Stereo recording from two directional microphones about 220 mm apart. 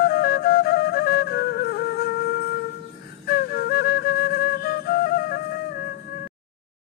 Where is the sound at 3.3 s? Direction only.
45° left (ahead or behind).